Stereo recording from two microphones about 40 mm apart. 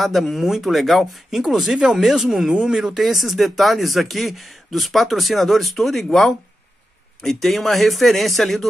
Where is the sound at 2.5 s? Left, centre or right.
Right.